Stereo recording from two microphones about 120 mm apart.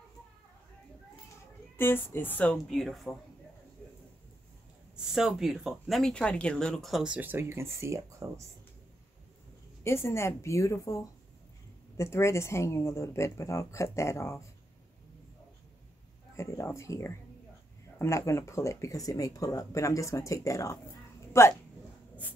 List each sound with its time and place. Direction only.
1.8 s a woman's voice: 20° left (ahead or behind)
2.5 s speech: centre (ahead or behind)
4.9 s speech: 5° right (ahead or behind); by 8.3 s 25° right (ahead or behind)
9.8 s speech: 20° left (ahead or behind)
16.3 s speech: 25° left (ahead or behind)